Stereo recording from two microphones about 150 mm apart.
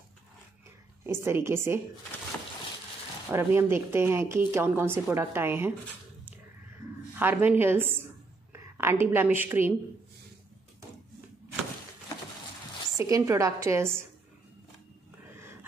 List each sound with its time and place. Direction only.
1.0 s a woman's voice: 15° right (ahead or behind)
3.3 s a woman's voice: 15° right (ahead or behind)
7.2 s a woman's voice: 15° right (ahead or behind)
12.9 s a woman's voice: 20° right (ahead or behind)